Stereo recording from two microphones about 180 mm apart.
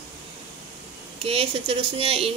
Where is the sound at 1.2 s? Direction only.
30° right (ahead or behind).